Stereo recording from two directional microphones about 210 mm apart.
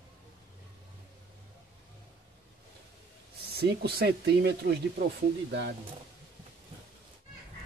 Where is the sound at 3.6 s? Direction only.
50° right (ahead or behind).